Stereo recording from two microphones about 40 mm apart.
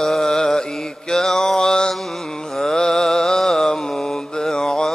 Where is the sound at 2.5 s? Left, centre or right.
Centre.